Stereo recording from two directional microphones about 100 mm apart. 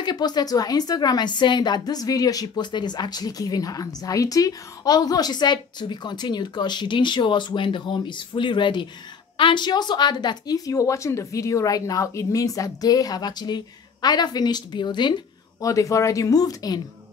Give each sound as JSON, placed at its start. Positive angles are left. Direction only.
{"t": 0.0, "sound": "a woman's voice", "side_deg": 45}
{"t": 15.6, "sound": "a woman's voice", "side_deg": 35}